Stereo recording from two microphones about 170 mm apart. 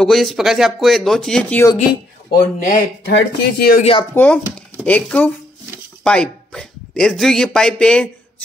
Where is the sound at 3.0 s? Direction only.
70° left (ahead or behind).